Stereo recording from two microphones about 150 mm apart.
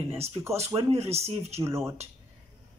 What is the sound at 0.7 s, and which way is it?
Speech, 45° right (ahead or behind).